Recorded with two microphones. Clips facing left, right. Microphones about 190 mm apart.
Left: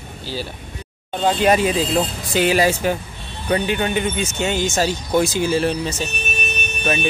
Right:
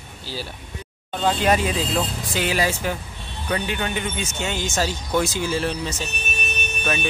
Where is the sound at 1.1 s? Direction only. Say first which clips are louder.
Left 4 dB; 20° left (ahead or behind).